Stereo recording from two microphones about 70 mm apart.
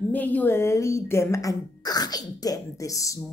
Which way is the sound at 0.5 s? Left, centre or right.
Left.